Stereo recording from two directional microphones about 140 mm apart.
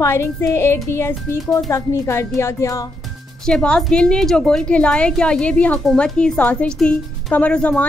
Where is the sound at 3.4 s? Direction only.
5° left (ahead or behind).